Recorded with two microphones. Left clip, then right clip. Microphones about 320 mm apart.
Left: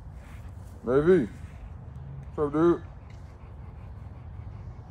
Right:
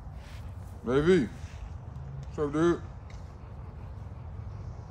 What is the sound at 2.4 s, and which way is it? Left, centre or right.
Speech, centre.